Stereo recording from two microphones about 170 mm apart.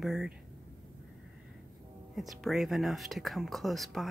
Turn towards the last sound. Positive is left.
turn(degrees=0)  # may be behind; listen again after turning